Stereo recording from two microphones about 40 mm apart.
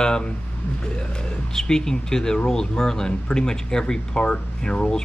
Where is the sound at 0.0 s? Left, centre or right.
Centre.